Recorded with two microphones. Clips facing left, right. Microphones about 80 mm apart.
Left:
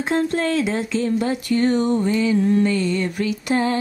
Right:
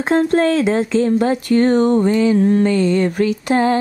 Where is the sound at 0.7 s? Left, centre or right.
Right.